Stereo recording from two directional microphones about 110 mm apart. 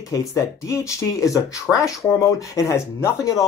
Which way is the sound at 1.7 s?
10° left (ahead or behind).